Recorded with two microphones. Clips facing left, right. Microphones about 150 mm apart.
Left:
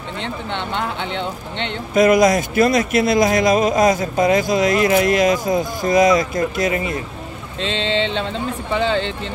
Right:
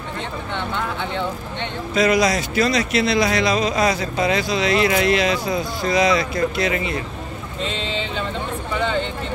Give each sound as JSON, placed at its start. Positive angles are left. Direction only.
{"t": 2.0, "sound": "a man's voice", "side_deg": 50}
{"t": 7.6, "sound": "vehicle", "side_deg": 90}